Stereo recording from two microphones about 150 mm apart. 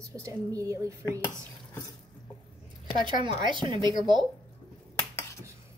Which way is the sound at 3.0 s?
30° right (ahead or behind).